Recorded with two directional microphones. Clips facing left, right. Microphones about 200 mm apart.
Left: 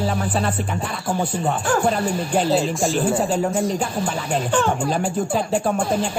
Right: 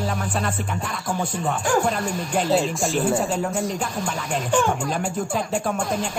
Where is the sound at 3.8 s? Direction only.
35° left (ahead or behind).